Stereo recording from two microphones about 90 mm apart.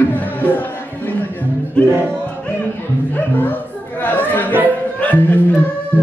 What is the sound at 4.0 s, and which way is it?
Chatter, 20° left (ahead or behind).